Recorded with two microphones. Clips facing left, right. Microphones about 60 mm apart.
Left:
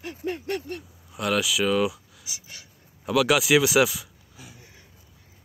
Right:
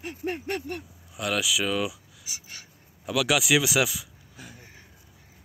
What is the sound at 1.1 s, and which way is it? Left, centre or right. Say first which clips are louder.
Speech: left 2 dB; centre.